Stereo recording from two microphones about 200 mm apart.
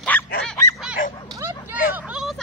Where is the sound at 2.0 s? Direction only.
5° right (ahead or behind).